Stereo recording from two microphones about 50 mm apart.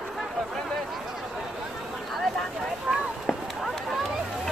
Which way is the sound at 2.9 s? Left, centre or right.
Centre.